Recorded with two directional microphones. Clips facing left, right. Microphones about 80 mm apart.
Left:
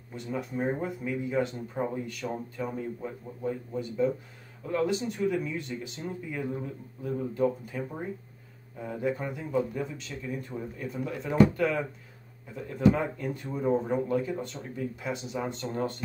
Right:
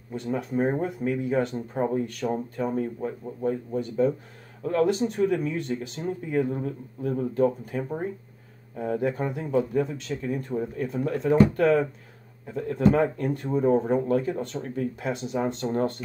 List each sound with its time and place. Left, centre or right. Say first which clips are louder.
0.1 s speech: right 6 dB; right